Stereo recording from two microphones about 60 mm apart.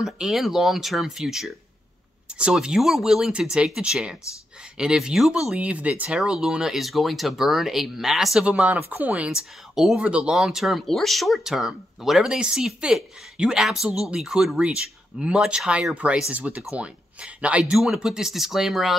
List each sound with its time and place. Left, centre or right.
0.0 s speech: centre
2.2 s speech: centre
6.0 s speech: centre
8.5 s speech: right
10.3 s speech: centre
15.9 s speech: right
17.7 s speech: centre